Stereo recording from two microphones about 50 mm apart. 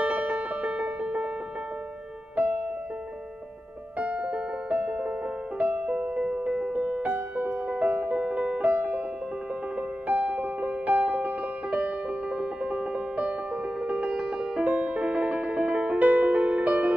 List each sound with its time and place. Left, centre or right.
0.0 s music: right
2.3 s music: right
4.0 s music: right